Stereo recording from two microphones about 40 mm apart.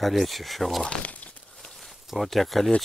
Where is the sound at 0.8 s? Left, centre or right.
Left.